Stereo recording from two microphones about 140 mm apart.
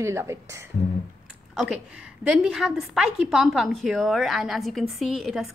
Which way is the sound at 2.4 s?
Centre (ahead or behind).